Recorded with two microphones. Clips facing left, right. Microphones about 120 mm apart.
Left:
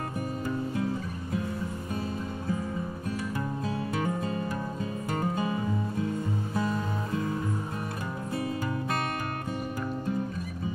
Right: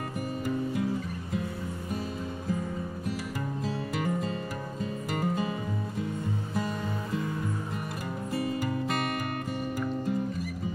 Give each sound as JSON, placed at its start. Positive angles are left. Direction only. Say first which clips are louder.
{"t": 5.2, "sound": "music", "louder": "even", "side_deg": 20}